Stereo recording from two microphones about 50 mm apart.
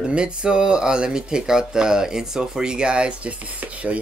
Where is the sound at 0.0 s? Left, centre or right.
Centre.